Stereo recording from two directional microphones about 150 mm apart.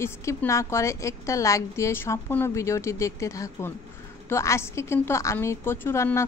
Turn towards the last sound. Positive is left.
turn(degrees=15)  # may be behind; listen again after turning